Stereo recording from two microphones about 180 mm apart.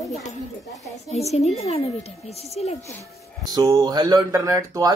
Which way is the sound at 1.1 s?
35° left (ahead or behind).